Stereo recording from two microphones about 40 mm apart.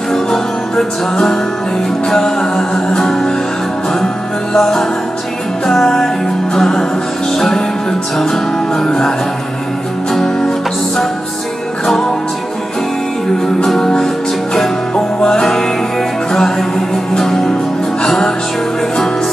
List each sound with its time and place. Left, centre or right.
0.1 s music: centre
3.0 s music: centre
4.6 s music: centre
11.8 s music: centre
13.7 s music: centre
16.3 s music: centre